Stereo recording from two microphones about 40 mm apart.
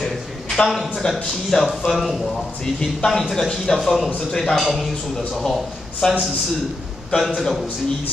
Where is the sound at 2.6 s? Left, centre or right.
Centre.